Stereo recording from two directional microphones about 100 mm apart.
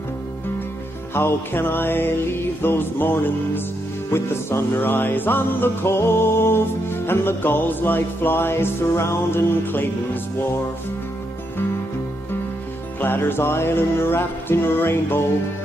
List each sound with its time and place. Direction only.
1.1 s music: 25° left (ahead or behind)
13.0 s music: 20° left (ahead or behind)